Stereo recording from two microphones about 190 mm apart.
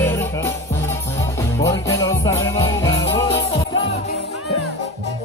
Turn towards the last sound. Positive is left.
turn(degrees=20)  # may be behind; listen again after turning